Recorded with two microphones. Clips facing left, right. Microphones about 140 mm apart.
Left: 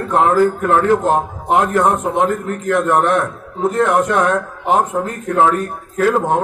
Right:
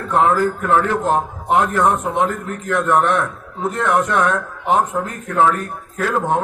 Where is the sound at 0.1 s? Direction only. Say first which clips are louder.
Left 1 dB; 15° left (ahead or behind).